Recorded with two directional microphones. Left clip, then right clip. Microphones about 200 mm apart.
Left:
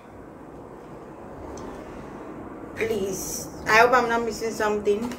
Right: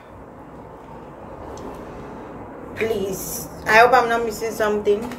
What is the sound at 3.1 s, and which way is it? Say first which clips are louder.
Speech: right 1 dB; 20° right (ahead or behind).